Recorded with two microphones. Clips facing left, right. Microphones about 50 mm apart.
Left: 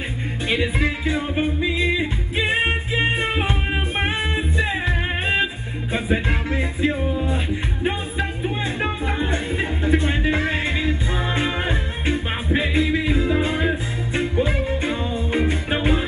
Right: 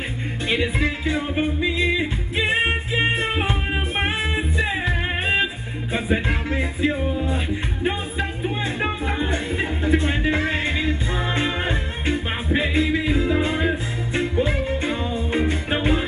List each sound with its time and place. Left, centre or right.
0.5 s music: centre